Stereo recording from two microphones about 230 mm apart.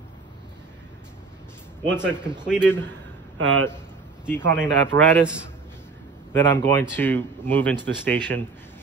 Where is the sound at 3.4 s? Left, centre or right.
Right.